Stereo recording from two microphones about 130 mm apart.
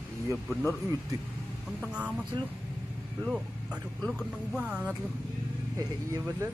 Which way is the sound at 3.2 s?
5° right (ahead or behind).